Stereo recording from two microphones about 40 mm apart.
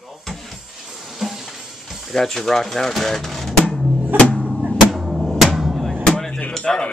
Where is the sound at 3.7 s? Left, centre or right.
Centre.